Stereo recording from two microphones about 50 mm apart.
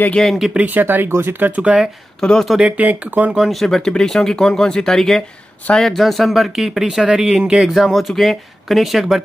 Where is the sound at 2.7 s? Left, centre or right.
Right.